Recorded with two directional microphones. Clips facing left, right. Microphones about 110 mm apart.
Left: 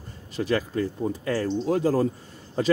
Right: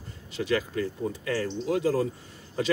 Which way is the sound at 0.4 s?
35° left (ahead or behind).